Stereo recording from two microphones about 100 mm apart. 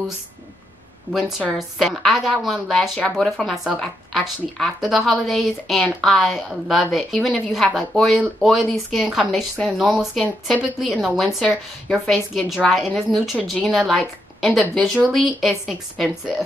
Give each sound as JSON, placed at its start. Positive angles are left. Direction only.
{"t": 1.1, "sound": "a woman's voice", "side_deg": 20}
{"t": 1.6, "sound": "a woman's voice", "side_deg": 0}